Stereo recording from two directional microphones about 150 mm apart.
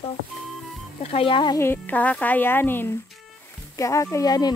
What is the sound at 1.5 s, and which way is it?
Speech, 15° left (ahead or behind).